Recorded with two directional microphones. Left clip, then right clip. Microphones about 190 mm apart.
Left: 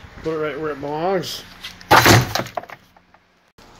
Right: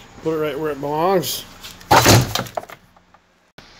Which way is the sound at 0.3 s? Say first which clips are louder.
Right 2 dB; 15° right (ahead or behind).